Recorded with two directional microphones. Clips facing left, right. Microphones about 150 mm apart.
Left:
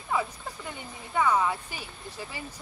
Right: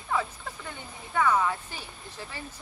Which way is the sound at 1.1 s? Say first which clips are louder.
Even; 10° left (ahead or behind).